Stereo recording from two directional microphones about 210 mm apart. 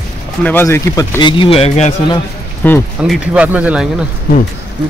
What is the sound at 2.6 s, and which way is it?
Speech, 10° left (ahead or behind).